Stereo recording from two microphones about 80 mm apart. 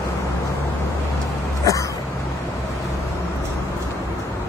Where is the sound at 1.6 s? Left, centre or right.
Left.